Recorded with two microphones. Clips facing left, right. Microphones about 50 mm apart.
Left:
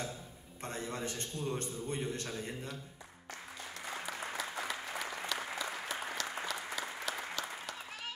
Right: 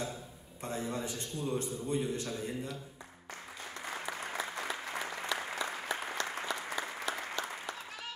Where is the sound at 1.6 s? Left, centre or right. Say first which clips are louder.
Right 4 dB; left.